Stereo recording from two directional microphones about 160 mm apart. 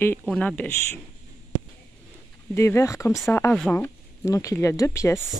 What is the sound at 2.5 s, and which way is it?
Speech, 15° left (ahead or behind).